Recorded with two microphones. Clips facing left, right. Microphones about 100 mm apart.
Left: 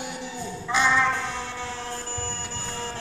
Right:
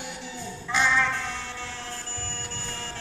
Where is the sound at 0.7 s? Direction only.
15° left (ahead or behind).